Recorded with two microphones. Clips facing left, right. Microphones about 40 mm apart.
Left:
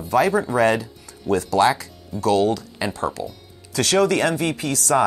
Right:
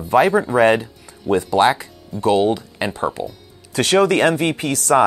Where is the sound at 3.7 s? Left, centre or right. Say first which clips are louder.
Right 3 dB; right.